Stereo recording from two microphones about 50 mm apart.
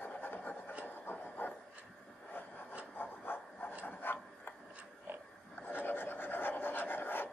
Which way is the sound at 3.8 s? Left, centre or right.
Left.